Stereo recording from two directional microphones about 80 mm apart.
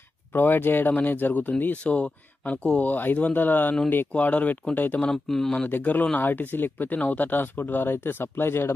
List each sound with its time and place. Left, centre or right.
0.3 s speech: left
5.1 s speech: centre
5.7 s speech: left